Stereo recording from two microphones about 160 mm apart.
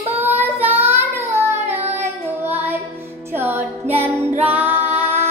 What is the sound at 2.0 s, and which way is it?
Music, 10° right (ahead or behind).